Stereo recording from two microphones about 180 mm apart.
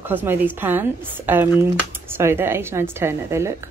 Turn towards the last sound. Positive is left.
turn(degrees=-15)  # may be behind; listen again after turning